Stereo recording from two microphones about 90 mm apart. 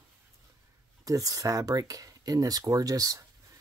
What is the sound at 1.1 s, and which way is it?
Speech, 40° right (ahead or behind).